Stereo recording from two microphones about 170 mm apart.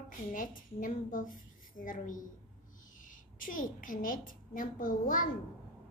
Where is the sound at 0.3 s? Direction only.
50° left (ahead or behind).